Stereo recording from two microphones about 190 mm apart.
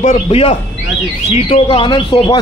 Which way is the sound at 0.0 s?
30° left (ahead or behind).